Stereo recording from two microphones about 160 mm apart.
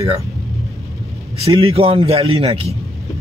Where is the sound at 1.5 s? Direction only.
35° right (ahead or behind).